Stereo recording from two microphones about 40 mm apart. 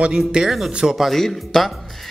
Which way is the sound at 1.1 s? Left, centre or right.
Centre.